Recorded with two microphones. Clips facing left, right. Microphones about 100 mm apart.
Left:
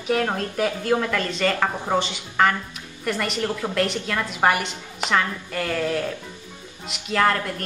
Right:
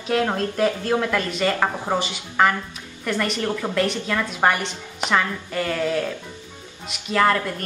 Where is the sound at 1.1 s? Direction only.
15° right (ahead or behind); by 3.3 s centre (ahead or behind).